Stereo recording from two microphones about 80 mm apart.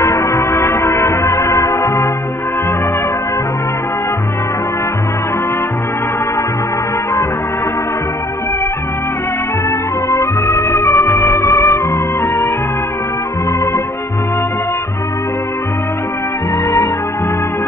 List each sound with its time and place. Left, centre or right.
0.0 s music: left
9.7 s music: left